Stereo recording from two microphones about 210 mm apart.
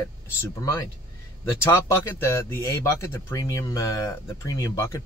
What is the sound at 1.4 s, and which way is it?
Speech, 15° left (ahead or behind).